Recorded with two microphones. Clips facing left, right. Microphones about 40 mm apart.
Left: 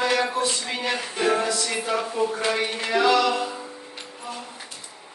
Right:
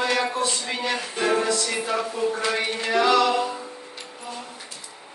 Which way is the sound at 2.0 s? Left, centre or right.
Centre.